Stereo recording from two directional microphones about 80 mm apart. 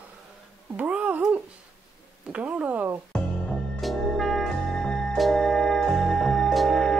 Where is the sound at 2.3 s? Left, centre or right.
Centre.